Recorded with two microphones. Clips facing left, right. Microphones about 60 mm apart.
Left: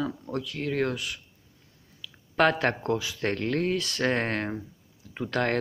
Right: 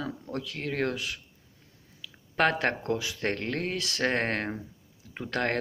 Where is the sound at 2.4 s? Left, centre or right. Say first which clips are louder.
Left 2 dB; right.